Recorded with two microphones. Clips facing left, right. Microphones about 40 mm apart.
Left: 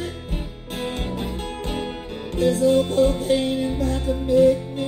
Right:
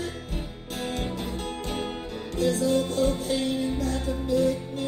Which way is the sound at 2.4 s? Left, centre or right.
Left.